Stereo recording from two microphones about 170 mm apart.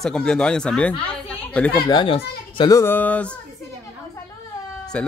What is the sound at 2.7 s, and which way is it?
Speech, 15° left (ahead or behind).